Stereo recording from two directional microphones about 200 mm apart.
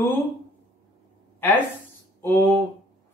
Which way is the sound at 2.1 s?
10° left (ahead or behind).